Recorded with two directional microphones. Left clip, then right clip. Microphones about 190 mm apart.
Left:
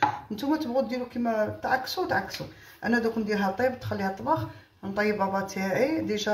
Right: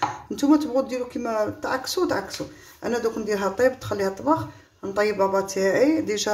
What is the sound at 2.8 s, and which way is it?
Speech, 45° right (ahead or behind).